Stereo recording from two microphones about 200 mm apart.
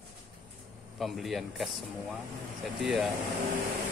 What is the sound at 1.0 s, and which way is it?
Speech, centre (ahead or behind).